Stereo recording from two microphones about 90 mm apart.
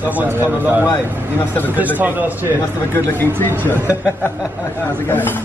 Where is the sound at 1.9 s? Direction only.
20° right (ahead or behind).